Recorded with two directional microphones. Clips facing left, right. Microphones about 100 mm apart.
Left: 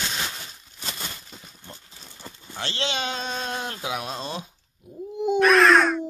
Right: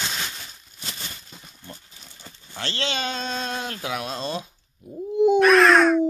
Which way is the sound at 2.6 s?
15° left (ahead or behind).